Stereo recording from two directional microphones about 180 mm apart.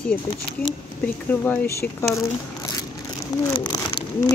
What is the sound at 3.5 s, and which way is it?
Speech, 25° left (ahead or behind).